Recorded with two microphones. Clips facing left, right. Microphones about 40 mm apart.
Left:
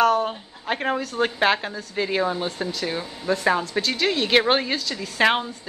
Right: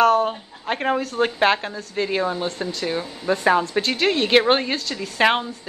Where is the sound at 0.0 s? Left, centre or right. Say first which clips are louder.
Right 3 dB; centre.